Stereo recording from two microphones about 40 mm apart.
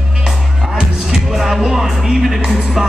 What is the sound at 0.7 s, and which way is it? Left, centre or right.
Music, centre.